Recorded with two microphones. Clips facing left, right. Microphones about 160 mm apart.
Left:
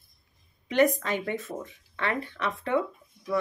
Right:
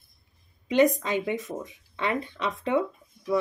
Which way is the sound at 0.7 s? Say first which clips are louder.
Right 2 dB; 15° right (ahead or behind).